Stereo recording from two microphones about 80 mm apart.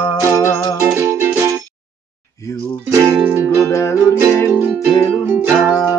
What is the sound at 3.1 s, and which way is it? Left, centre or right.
Music, right.